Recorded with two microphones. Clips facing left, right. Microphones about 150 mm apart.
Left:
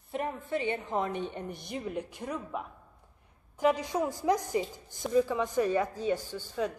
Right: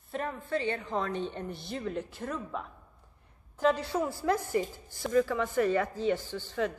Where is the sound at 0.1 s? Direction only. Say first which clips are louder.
Even; 20° left (ahead or behind).